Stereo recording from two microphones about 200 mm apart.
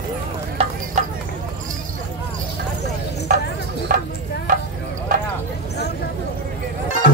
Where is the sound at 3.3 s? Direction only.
45° right (ahead or behind).